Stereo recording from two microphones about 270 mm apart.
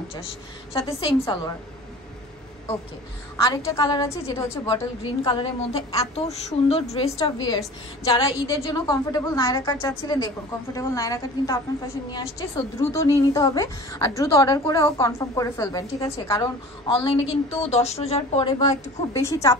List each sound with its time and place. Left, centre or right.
0.7 s a woman's voice: centre
3.4 s a woman's voice: centre